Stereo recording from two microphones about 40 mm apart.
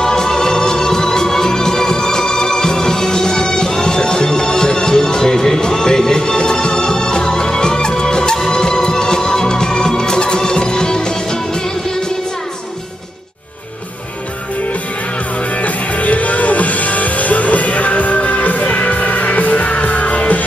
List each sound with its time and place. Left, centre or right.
0.0 s music: centre
15.5 s music: left